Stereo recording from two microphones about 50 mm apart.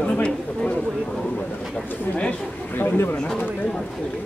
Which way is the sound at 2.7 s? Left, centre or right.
Left.